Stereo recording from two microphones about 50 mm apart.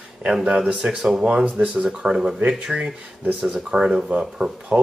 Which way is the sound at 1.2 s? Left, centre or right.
Right.